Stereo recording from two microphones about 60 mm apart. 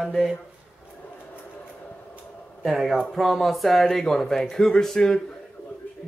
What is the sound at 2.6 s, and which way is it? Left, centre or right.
Speech, centre.